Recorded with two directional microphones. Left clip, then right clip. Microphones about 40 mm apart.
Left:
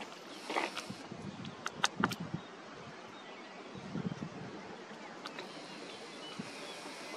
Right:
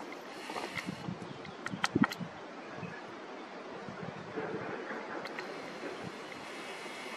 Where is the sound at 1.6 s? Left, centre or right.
Left.